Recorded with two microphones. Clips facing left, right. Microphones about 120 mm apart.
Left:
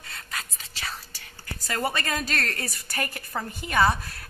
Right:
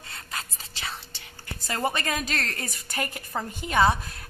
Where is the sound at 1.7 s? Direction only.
20° right (ahead or behind).